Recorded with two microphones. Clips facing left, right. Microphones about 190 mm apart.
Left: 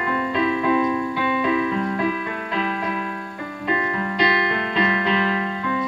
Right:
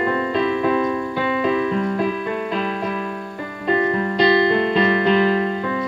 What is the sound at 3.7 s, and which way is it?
Music, 35° right (ahead or behind).